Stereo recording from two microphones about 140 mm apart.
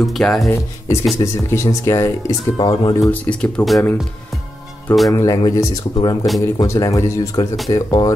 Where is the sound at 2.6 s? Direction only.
35° left (ahead or behind).